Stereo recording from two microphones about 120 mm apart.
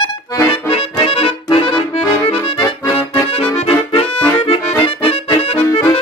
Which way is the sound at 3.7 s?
55° left (ahead or behind).